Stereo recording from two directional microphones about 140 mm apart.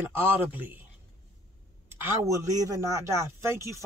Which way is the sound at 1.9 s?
15° right (ahead or behind).